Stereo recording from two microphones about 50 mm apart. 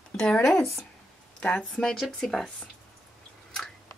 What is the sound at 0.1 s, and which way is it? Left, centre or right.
Speech, centre.